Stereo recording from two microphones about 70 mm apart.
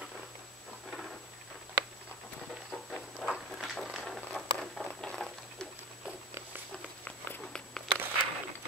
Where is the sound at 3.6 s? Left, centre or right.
Centre.